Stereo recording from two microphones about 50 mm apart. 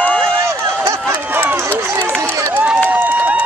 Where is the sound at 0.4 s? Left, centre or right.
Right.